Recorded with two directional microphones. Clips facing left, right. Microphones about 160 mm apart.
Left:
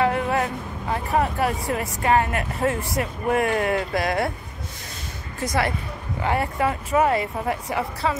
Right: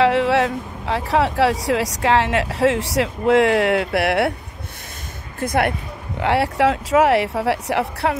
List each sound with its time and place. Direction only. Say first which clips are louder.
0.0 s speech: right 6 dB; 85° right
5.4 s speech: right 4 dB; 55° right (ahead or behind)
6.1 s speech: right 5 dB; 75° right (ahead or behind)